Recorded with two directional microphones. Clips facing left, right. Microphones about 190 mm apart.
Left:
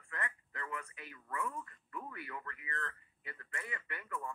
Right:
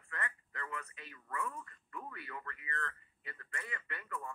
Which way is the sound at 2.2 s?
25° left (ahead or behind).